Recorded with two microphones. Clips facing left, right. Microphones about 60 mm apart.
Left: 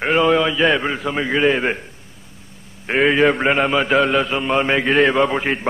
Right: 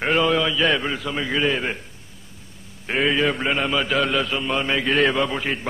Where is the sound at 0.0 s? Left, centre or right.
Centre.